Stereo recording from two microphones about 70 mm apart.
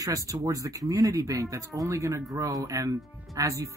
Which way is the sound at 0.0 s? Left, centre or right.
Right.